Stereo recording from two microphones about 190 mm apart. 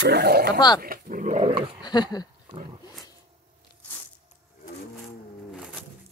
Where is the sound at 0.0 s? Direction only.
60° right (ahead or behind).